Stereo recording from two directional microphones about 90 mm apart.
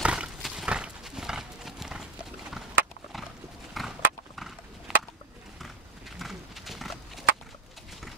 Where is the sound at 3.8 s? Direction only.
Centre (ahead or behind).